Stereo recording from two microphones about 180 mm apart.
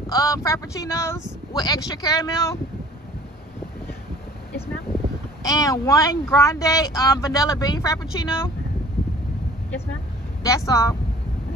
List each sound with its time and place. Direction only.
0.1 s speech: 20° left (ahead or behind)
5.4 s speech: 20° left (ahead or behind)
10.4 s speech: 20° left (ahead or behind)